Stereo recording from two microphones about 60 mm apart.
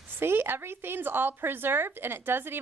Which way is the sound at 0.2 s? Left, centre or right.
Right.